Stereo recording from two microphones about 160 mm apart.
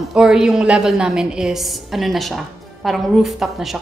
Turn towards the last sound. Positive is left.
turn(degrees=0)  # may be behind; listen again after turning